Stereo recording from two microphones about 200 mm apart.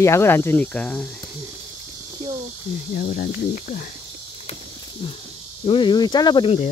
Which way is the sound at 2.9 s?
50° left (ahead or behind).